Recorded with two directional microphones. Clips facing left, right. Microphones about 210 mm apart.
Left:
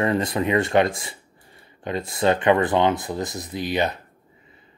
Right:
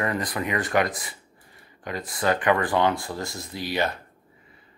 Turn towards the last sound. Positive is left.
turn(degrees=20)  # may be behind; listen again after turning